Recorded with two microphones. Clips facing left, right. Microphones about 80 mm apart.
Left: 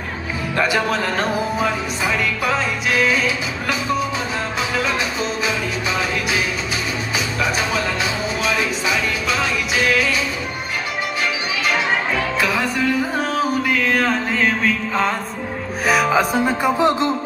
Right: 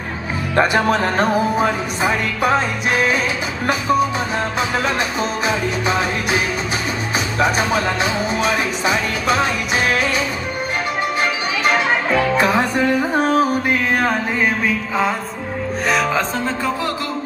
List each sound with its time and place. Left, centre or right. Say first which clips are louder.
0.6 s music: right 4 dB; right
0.9 s music: right 4 dB; right
5.5 s music: right 3 dB; right
12.4 s music: right 4 dB; right
13.2 s mantra: right 4 dB; centre
15.9 s music: left 3 dB; centre